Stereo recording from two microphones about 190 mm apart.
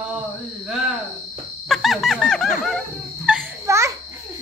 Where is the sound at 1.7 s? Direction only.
Centre (ahead or behind).